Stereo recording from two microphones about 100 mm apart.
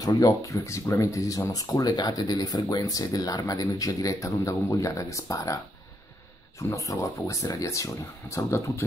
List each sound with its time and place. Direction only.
0.0 s speech: 40° left (ahead or behind)
6.7 s speech: 30° left (ahead or behind)